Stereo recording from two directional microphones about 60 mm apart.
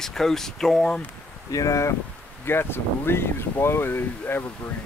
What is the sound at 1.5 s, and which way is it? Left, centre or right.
Speech, left.